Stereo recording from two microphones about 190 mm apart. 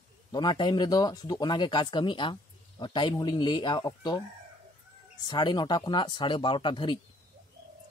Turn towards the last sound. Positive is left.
turn(degrees=25)  # may be behind; listen again after turning